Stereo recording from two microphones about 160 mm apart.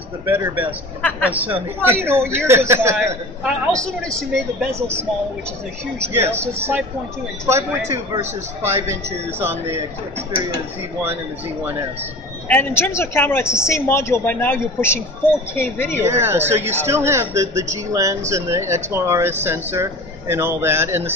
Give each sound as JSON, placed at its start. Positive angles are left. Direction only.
{"t": 0.2, "sound": "speech", "side_deg": -15}
{"t": 3.4, "sound": "a woman's voice", "side_deg": 0}
{"t": 5.9, "sound": "speech", "side_deg": -15}
{"t": 12.4, "sound": "a woman's voice", "side_deg": 10}
{"t": 16.0, "sound": "speech", "side_deg": -15}